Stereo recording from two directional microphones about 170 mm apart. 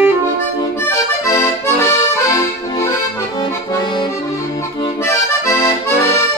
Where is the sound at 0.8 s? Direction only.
15° left (ahead or behind).